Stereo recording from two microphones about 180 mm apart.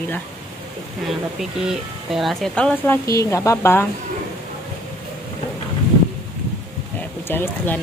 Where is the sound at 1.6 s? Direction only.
Centre (ahead or behind); by 3.8 s 15° left (ahead or behind).